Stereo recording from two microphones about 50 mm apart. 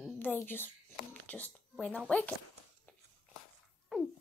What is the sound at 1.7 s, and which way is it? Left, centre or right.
Speech, left.